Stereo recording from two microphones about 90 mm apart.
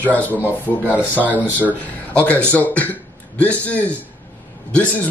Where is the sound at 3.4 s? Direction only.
15° left (ahead or behind).